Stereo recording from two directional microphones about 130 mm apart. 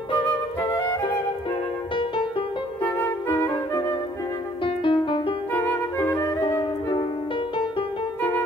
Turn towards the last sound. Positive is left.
turn(degrees=40)  # may be behind; listen again after turning